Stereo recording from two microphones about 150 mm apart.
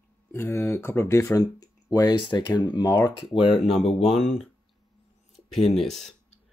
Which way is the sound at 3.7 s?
45° left (ahead or behind).